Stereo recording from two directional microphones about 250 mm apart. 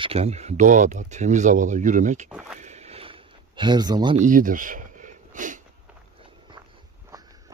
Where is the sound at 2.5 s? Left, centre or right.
Right.